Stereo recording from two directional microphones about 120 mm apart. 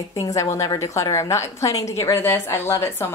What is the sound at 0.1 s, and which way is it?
Speech, 30° left (ahead or behind).